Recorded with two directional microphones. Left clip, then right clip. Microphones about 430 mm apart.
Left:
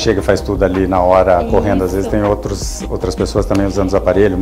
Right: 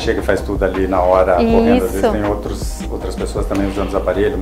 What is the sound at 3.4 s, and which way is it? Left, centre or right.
Speech, left.